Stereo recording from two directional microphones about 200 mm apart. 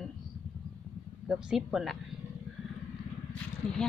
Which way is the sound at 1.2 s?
Centre (ahead or behind).